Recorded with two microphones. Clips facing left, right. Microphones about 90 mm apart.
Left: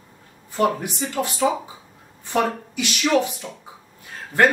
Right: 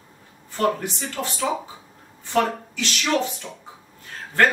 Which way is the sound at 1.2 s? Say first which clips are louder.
Left 4 dB; 15° left (ahead or behind).